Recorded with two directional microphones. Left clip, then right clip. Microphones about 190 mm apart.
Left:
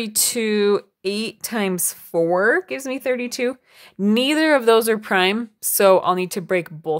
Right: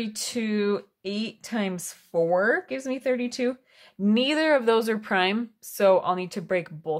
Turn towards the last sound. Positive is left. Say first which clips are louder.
# left 5 dB
turn(degrees=30)  # may be behind; listen again after turning